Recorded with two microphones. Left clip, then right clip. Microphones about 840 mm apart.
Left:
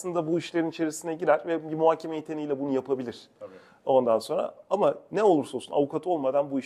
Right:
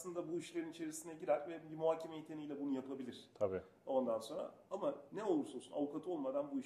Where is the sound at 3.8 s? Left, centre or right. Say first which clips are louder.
Left 16 dB; left.